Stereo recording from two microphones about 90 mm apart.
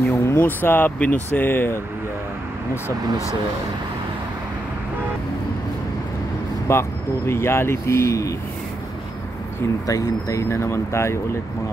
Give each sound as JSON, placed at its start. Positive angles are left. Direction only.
{"t": 0.1, "sound": "speech", "side_deg": 30}
{"t": 2.7, "sound": "speech", "side_deg": 35}
{"t": 6.7, "sound": "speech", "side_deg": 30}
{"t": 9.8, "sound": "speech", "side_deg": 40}